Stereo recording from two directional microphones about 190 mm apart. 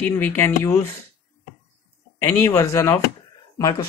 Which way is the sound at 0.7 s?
15° left (ahead or behind).